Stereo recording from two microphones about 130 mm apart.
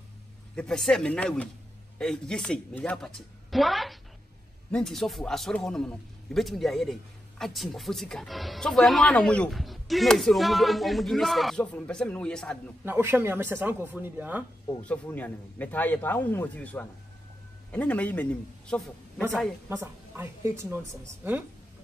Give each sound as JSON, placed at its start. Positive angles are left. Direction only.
{"t": 0.6, "sound": "a man's voice", "side_deg": 5}
{"t": 12.8, "sound": "speech", "side_deg": -15}
{"t": 15.1, "sound": "a man's voice", "side_deg": 15}
{"t": 19.7, "sound": "a woman's voice", "side_deg": -20}